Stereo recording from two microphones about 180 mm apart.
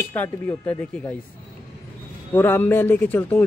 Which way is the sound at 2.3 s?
10° left (ahead or behind).